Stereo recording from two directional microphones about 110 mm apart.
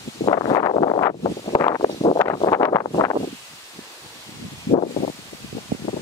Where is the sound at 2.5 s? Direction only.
30° left (ahead or behind).